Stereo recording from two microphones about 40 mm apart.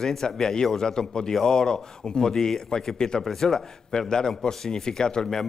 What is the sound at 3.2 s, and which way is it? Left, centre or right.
A man's voice, centre.